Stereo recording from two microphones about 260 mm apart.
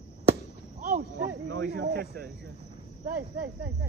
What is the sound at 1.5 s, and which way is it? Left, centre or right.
Speech, right.